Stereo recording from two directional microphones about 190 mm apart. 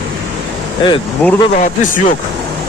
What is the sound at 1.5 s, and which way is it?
Speech, 40° left (ahead or behind).